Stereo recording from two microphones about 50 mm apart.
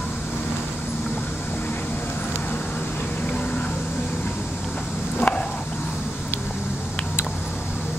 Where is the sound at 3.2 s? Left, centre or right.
Left.